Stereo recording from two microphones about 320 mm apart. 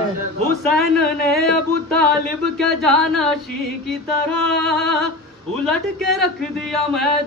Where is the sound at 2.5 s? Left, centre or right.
Centre.